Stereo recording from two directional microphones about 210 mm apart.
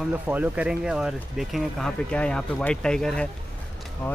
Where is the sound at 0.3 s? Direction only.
5° right (ahead or behind).